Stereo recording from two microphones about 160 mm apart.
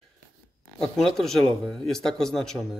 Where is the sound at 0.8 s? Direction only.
5° left (ahead or behind).